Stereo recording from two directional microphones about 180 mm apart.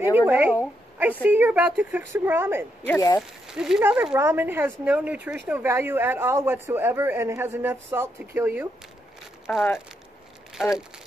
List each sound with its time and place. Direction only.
0.0 s a woman's voice: 10° right (ahead or behind)
2.9 s speech: 20° left (ahead or behind)
3.2 s speech: 5° right (ahead or behind)
9.5 s speech: 10° left (ahead or behind)